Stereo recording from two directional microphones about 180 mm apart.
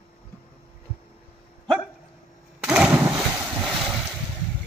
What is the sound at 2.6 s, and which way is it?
Lawn mower, 5° right (ahead or behind).